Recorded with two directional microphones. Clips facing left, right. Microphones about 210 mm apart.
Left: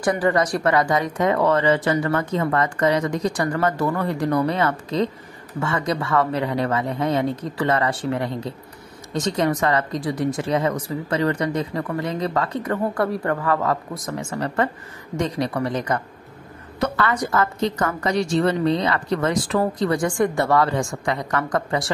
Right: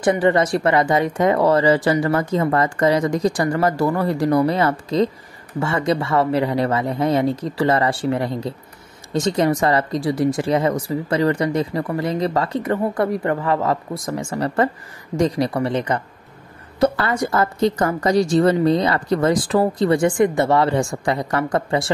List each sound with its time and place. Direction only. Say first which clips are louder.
0.0 s a woman's voice: right 3 dB; 25° right (ahead or behind)
12.9 s a woman's voice: right 2 dB; 20° right (ahead or behind)